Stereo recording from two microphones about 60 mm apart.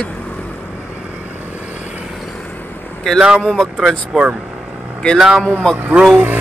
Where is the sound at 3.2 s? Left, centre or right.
Centre.